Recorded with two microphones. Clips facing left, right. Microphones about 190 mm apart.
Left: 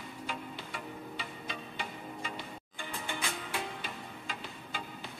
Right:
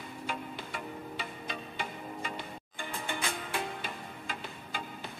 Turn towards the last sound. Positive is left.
turn(degrees=-50)  # may be behind; listen again after turning